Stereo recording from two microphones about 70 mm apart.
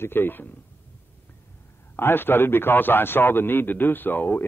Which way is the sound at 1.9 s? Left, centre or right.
Left.